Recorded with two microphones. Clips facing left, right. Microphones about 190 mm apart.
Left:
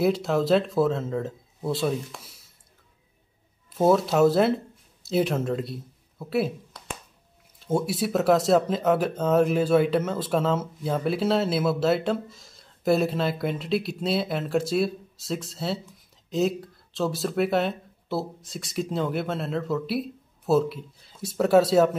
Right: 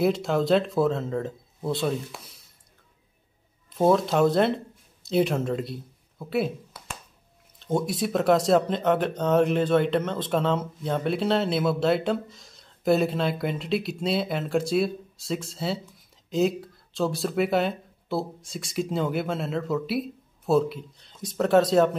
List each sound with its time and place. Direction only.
0.0 s speech: centre (ahead or behind)
3.7 s speech: 5° left (ahead or behind)